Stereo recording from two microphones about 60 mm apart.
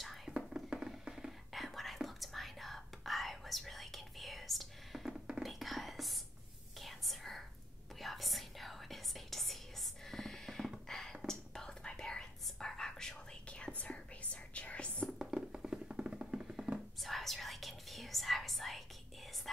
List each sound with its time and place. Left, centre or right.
0.0 s whispering: centre
0.7 s music: centre
1.5 s whispering: centre
10.9 s beatboxing: centre
11.2 s whispering: centre
13.5 s whispering: left
15.0 s music: centre
17.0 s whispering: centre